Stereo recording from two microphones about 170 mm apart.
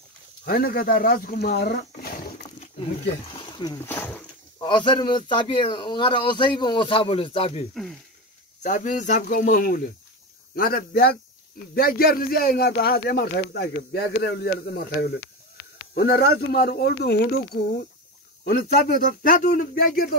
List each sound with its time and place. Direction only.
0.5 s speech: 65° left (ahead or behind)
3.3 s a sound: 25° left (ahead or behind)
3.8 s speech: 10° left (ahead or behind)
4.6 s speech: 25° left (ahead or behind)
8.6 s speech: 50° left (ahead or behind); by 17.4 s 75° left (ahead or behind)
18.4 s speech: 60° left (ahead or behind)